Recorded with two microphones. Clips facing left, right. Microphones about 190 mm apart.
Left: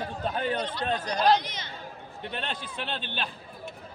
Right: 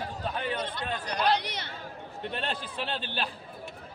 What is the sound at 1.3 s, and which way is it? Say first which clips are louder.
Speech: left 4 dB; 65° right (ahead or behind).